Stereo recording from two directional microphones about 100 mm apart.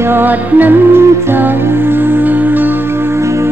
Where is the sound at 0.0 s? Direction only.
20° right (ahead or behind).